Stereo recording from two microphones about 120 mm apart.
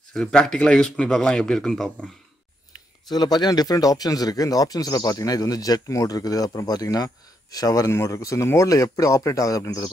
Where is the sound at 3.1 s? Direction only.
35° left (ahead or behind).